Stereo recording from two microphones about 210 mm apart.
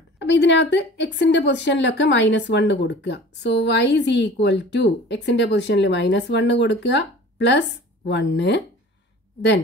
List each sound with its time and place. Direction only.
0.2 s a woman's voice: 55° left (ahead or behind)